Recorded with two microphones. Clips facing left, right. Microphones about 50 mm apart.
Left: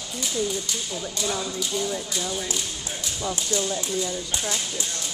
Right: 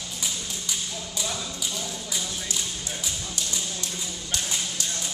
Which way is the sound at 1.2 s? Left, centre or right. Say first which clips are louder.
Left 5 dB; centre.